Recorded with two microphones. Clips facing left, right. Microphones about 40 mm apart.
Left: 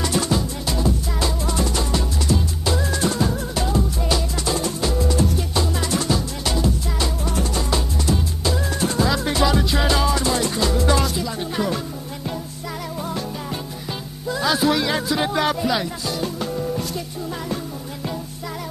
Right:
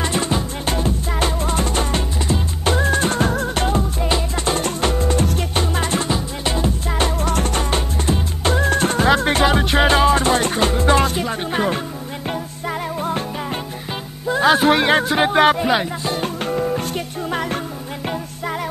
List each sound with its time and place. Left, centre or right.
0.0 s music: right
4.0 s music: right
4.6 s music: right
6.0 s music: right
7.2 s music: right